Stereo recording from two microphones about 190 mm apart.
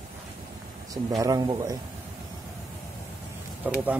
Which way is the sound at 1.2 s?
20° right (ahead or behind).